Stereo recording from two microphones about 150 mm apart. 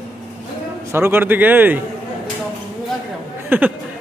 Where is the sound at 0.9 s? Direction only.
15° right (ahead or behind).